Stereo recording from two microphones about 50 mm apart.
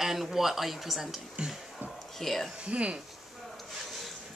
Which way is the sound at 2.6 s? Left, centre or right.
Right.